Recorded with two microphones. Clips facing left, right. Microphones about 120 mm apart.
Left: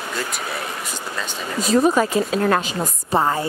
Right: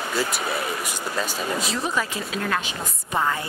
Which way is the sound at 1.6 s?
45° left (ahead or behind).